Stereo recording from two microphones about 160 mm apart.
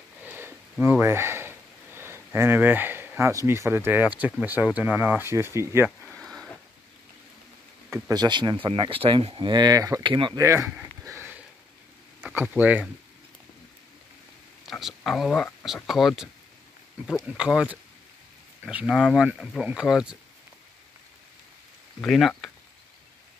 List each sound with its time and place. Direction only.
0.2 s speech: 15° right (ahead or behind)
5.9 s a sound: 5° left (ahead or behind)
7.9 s speech: 25° right (ahead or behind)
10.4 s a sound: 20° right (ahead or behind)
12.2 s speech: 10° right (ahead or behind)
14.7 s speech: centre (ahead or behind)
22.0 s speech: 5° left (ahead or behind)